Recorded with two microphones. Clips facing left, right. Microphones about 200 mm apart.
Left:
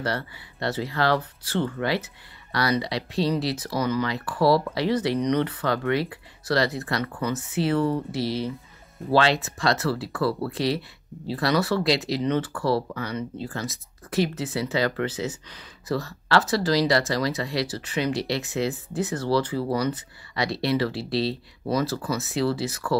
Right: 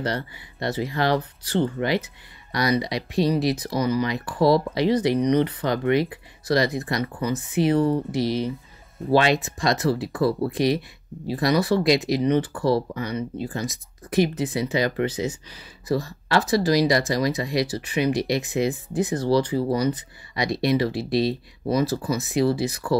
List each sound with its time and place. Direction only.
0.0 s speech: 15° right (ahead or behind)